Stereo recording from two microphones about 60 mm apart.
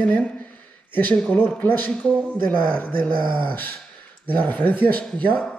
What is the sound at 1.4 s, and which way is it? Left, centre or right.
Speech, left.